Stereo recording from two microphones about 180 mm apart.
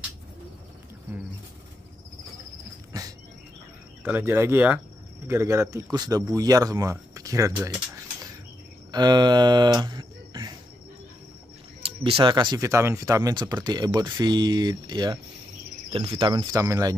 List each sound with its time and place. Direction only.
2.9 s dog: 20° right (ahead or behind)
4.0 s speech: 10° right (ahead or behind)
11.8 s speech: 30° right (ahead or behind)